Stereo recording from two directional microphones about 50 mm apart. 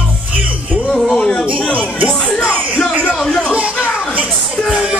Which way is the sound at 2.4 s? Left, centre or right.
Right.